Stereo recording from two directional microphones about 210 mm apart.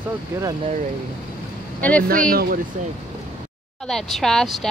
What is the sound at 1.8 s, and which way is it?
Speech, 5° left (ahead or behind).